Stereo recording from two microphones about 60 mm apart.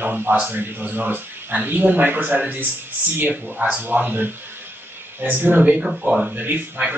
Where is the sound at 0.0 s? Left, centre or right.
Right.